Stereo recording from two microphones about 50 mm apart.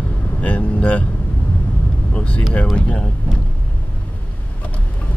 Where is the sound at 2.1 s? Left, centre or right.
Left.